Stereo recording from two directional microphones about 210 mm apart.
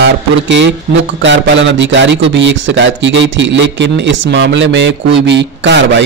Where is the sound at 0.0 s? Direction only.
55° right (ahead or behind).